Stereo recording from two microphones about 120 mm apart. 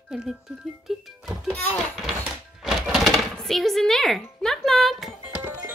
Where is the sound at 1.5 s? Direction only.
15° left (ahead or behind).